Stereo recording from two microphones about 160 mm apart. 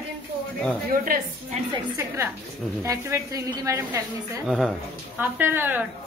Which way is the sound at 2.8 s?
20° right (ahead or behind).